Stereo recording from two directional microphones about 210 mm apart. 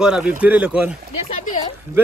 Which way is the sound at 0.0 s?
5° right (ahead or behind).